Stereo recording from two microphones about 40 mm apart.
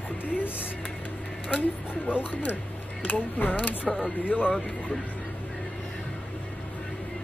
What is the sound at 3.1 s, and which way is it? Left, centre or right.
Speech, left.